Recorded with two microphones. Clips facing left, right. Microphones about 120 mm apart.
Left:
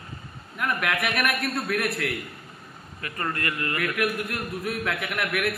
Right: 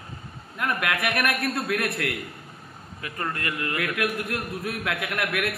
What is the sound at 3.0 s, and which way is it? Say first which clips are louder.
A man's voice: left 1 dB; 10° right (ahead or behind).